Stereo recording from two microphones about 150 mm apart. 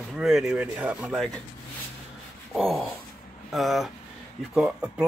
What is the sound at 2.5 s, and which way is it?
Speech, centre (ahead or behind).